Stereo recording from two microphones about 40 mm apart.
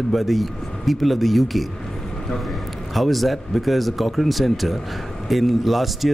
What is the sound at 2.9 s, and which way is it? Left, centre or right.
Speech, centre.